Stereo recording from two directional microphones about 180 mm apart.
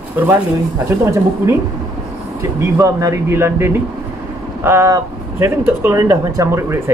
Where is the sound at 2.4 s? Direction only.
15° right (ahead or behind).